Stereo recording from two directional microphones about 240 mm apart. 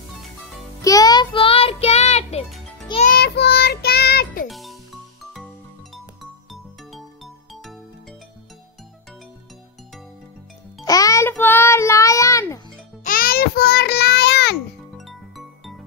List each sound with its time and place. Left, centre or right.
0.8 s music: centre
3.2 s child singing: left
4.5 s music: centre
6.5 s music: centre
10.9 s child singing: centre
13.0 s music: left
15.0 s music: centre